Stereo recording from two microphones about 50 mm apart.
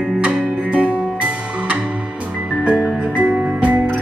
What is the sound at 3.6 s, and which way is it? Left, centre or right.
Music, right.